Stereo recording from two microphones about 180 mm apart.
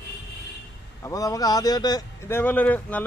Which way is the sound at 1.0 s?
20° left (ahead or behind).